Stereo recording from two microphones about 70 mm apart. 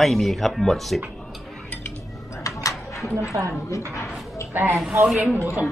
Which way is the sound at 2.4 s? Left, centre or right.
Left.